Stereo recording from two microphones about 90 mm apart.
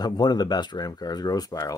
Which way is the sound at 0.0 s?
50° left (ahead or behind).